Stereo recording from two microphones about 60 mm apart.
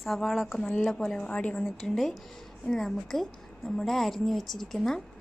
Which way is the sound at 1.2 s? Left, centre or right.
Left.